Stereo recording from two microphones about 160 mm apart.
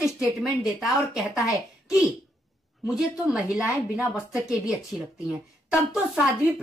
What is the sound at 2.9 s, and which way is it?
Speech, 5° right (ahead or behind).